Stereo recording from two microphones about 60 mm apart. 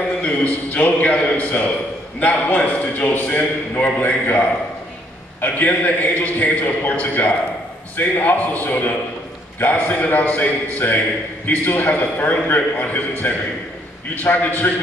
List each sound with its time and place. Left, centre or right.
0.2 s a man's voice: left